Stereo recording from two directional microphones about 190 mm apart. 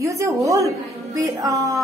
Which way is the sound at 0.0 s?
15° right (ahead or behind).